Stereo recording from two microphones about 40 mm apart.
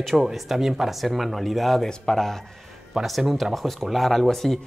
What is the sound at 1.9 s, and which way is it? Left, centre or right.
Speech, centre.